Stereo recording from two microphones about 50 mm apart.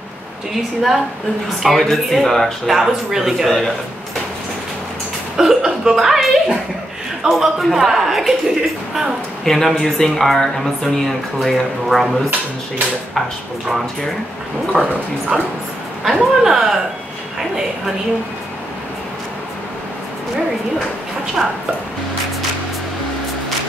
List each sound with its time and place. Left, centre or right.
0.5 s speech: centre
5.4 s speech: centre
7.2 s a man's voice: centre
9.4 s speech: centre
14.9 s speech: right
16.0 s a man's voice: centre